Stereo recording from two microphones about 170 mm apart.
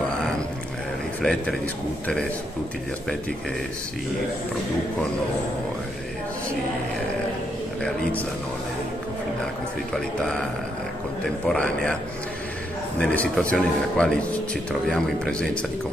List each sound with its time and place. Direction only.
1.2 s a man's voice: centre (ahead or behind)
7.8 s a man's voice: 5° left (ahead or behind)
9.9 s a man's voice: 5° left (ahead or behind)
13.0 s a man's voice: 10° left (ahead or behind)